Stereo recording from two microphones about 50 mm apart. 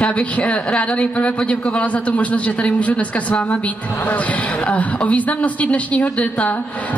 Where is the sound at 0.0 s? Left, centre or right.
Left.